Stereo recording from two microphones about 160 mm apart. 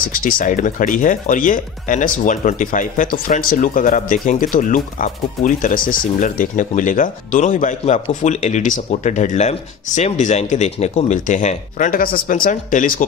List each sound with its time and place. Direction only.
0.0 s speech: 60° left (ahead or behind)